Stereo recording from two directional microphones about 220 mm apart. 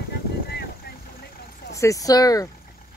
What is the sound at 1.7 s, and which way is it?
Speech, 15° left (ahead or behind).